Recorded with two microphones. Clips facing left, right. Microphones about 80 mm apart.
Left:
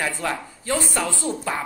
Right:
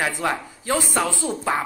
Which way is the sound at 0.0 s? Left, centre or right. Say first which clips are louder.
Right 2 dB; centre.